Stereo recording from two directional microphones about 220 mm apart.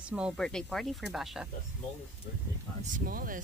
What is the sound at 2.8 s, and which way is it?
Speech, 40° right (ahead or behind).